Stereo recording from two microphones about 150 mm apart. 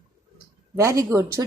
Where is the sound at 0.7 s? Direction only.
20° right (ahead or behind).